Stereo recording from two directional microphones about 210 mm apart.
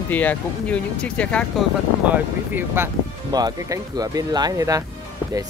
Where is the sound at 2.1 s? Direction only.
10° right (ahead or behind).